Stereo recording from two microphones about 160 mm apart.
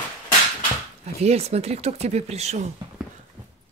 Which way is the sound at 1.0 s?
40° right (ahead or behind).